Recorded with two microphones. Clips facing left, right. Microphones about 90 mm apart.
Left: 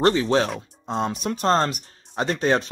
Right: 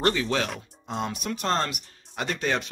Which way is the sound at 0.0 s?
30° left (ahead or behind).